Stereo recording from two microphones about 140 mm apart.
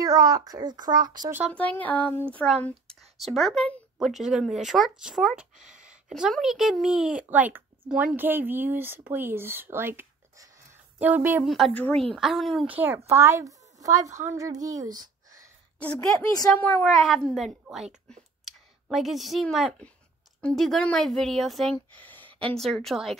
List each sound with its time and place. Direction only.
0.0 s a child's voice: 25° right (ahead or behind)
1.5 s speech: 10° left (ahead or behind)
3.2 s speech: centre (ahead or behind)
4.0 s speech: 5° right (ahead or behind)
11.4 s speech: centre (ahead or behind)
12.6 s a woman's voice: 15° right (ahead or behind)
15.8 s speech: 10° left (ahead or behind)
16.8 s speech: centre (ahead or behind)